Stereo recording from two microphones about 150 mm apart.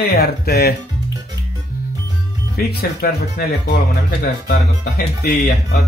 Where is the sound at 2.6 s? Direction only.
90° left.